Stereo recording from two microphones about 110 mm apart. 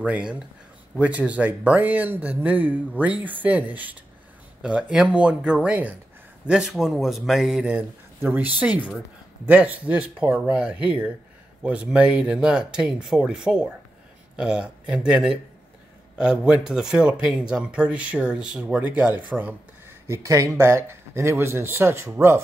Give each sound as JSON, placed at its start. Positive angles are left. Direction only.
{"t": 0.0, "sound": "speech", "side_deg": -10}